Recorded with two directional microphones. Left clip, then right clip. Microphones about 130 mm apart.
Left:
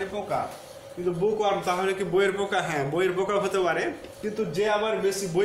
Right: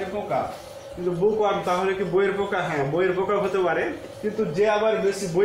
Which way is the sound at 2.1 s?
45° left (ahead or behind).